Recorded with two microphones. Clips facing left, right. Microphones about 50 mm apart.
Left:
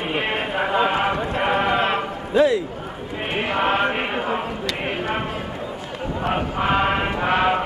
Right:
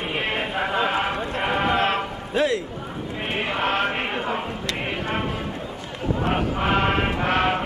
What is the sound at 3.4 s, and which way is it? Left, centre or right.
Speech, centre.